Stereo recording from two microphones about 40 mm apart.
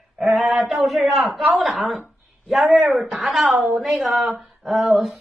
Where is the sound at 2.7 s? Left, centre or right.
Centre.